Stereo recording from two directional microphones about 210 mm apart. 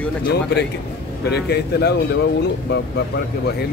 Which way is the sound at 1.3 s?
50° left (ahead or behind).